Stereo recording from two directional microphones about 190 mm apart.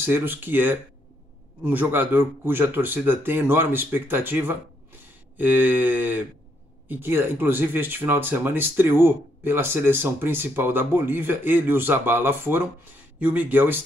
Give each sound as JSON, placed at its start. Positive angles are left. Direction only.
{"t": 0.0, "sound": "speech", "side_deg": -10}